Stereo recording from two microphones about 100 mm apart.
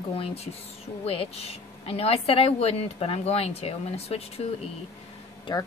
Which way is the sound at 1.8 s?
85° left.